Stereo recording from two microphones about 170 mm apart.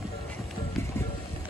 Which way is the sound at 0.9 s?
15° left (ahead or behind).